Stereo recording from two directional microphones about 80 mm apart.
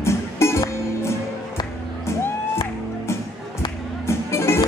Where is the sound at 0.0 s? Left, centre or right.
Left.